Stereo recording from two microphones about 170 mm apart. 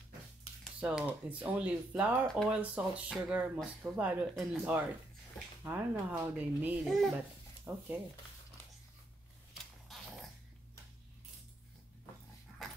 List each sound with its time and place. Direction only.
0.7 s speech: 10° right (ahead or behind)